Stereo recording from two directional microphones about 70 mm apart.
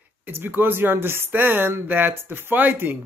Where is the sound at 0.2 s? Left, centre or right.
Right.